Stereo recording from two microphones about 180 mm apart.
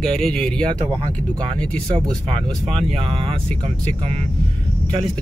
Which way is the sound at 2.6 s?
30° right (ahead or behind).